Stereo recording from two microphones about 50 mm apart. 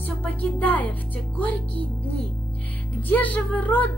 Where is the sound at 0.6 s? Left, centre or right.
Left.